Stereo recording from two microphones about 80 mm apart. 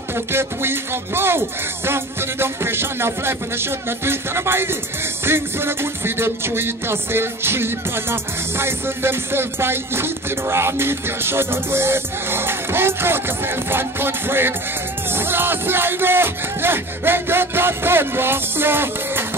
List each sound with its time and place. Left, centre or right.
0.1 s music: right